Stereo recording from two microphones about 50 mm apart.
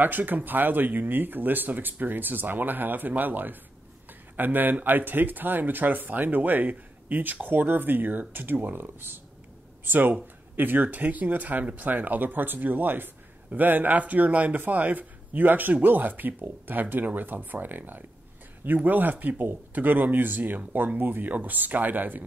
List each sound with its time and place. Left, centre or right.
0.0 s speech: right